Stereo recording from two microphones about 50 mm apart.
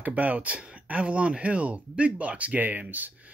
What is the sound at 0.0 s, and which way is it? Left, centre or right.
Speech, right.